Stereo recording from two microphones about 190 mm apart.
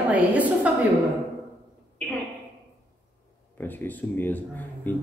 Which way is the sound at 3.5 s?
10° left (ahead or behind).